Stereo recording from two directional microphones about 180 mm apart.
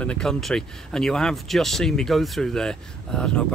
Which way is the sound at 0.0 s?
5° left (ahead or behind).